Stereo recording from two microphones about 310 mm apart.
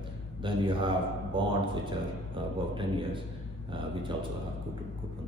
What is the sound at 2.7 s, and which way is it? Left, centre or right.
Speech, centre.